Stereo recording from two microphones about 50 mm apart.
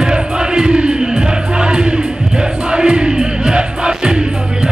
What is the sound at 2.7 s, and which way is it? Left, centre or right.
Music, centre.